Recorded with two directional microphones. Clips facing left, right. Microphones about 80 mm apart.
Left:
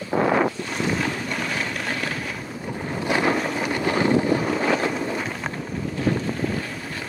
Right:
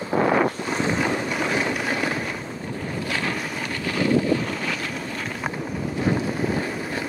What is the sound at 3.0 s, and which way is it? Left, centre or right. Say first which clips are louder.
Boat: left 8 dB; left.